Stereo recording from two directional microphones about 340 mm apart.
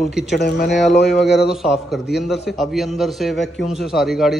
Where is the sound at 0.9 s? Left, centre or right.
Left.